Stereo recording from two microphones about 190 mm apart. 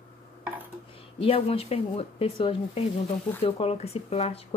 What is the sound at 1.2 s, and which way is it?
Speech, 30° left (ahead or behind).